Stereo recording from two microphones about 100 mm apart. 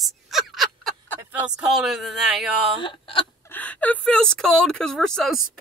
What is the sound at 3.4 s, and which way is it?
A woman's voice, 20° left (ahead or behind).